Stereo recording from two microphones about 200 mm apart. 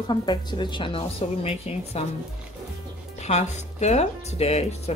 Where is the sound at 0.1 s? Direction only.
20° left (ahead or behind).